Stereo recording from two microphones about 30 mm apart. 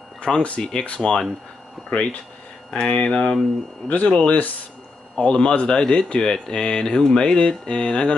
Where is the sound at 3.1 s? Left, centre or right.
Left.